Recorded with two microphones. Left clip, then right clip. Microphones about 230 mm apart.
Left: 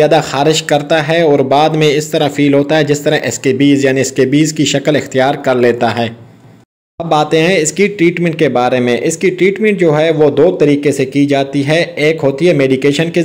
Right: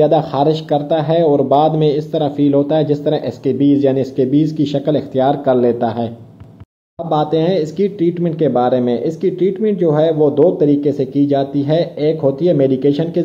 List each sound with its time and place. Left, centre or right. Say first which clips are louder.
0.0 s speech: left 3 dB; left
7.2 s speech: left 4 dB; left